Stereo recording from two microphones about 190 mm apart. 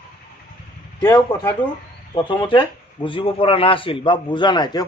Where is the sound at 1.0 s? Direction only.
15° left (ahead or behind).